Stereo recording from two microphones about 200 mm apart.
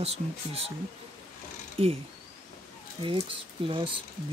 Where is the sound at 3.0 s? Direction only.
25° right (ahead or behind).